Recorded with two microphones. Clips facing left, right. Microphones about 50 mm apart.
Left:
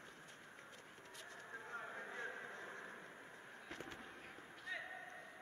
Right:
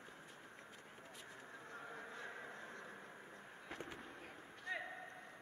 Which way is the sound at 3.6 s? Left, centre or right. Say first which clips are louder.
Right 2 dB; centre.